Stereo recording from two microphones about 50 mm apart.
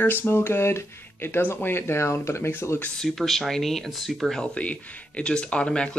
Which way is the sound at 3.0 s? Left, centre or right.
Centre.